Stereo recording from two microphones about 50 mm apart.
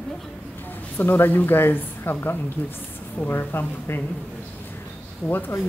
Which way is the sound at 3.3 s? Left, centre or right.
Left.